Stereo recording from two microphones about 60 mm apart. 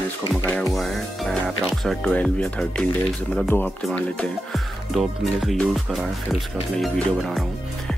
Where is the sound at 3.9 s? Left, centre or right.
Centre.